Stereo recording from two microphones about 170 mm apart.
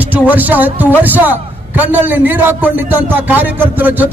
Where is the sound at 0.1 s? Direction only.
10° right (ahead or behind).